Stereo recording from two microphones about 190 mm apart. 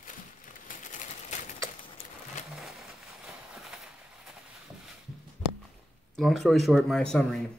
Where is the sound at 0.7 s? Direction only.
40° left (ahead or behind).